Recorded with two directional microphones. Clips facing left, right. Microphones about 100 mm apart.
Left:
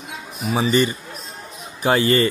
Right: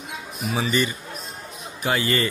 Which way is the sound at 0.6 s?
35° left (ahead or behind).